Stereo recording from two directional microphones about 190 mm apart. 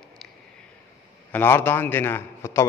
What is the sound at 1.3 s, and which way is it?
Speech, 10° left (ahead or behind).